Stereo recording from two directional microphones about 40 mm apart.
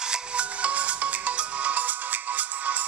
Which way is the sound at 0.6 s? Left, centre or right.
Right.